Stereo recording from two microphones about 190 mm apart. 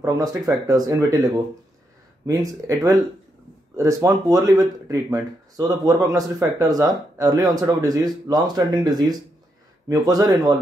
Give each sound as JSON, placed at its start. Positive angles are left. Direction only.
{"t": 0.0, "sound": "speech", "side_deg": -15}